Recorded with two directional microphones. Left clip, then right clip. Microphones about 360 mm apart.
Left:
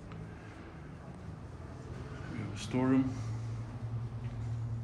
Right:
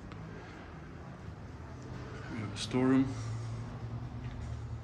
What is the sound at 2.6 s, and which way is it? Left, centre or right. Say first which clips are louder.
Speech: right 2 dB; centre.